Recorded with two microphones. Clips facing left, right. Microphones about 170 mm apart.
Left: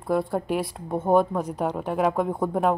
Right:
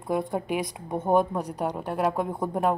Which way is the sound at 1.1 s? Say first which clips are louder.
Left 2 dB; 15° right (ahead or behind).